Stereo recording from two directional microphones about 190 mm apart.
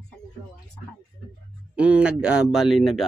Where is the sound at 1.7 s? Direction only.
5° right (ahead or behind).